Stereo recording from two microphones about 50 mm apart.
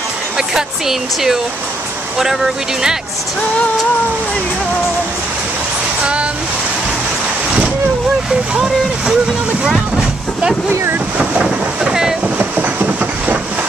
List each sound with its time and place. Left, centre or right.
0.4 s speech: centre
8.3 s speech: centre
11.1 s vehicle: centre
12.4 s train: right